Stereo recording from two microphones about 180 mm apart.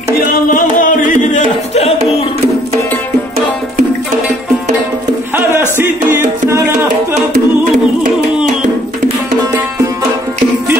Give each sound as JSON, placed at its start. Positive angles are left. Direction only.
{"t": 0.5, "sound": "music", "side_deg": 50}
{"t": 5.3, "sound": "music", "side_deg": -15}